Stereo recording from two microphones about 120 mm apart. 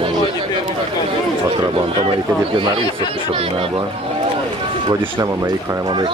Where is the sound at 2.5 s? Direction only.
45° right (ahead or behind).